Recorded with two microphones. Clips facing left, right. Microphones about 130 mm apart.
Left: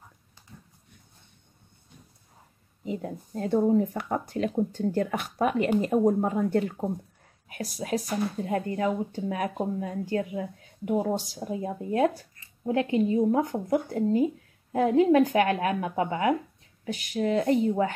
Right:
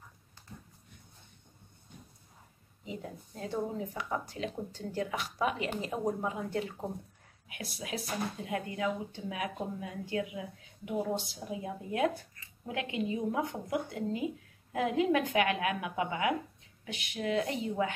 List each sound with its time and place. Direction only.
2.8 s speech: 45° left (ahead or behind)
7.4 s speech: 40° left (ahead or behind)